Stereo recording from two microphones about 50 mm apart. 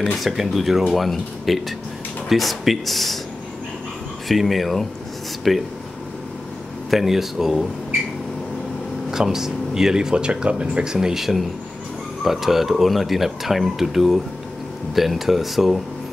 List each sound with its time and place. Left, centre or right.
0.2 s speech: centre
4.3 s speech: centre
6.9 s speech: centre
9.1 s speech: centre